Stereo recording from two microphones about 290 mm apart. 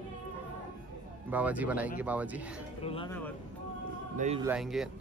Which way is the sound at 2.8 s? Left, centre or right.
Centre.